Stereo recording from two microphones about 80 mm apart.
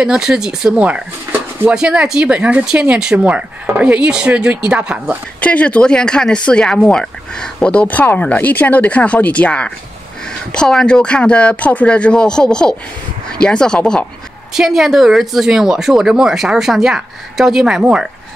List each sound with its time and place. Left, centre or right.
0.0 s speech: centre
0.8 s speech: centre
5.4 s speech: centre
14.5 s speech: centre